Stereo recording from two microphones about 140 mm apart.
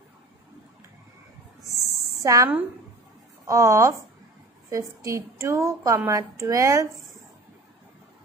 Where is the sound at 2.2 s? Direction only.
20° right (ahead or behind).